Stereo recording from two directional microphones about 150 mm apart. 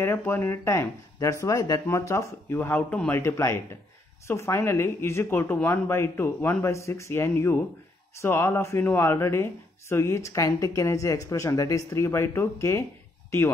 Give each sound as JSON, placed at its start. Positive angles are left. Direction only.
{"t": 0.0, "sound": "speech", "side_deg": 15}